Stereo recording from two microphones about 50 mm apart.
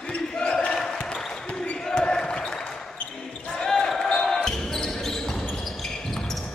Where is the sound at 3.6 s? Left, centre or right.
Centre.